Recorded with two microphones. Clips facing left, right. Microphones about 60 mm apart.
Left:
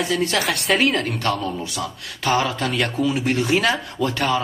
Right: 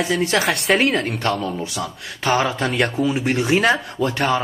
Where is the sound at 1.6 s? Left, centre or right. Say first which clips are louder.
Right 1 dB; right.